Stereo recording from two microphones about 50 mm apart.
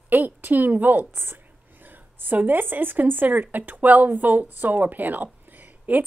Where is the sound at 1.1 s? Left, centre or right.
Right.